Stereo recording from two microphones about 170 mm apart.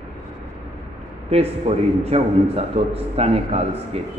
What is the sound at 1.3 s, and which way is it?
A man's voice, 35° right (ahead or behind).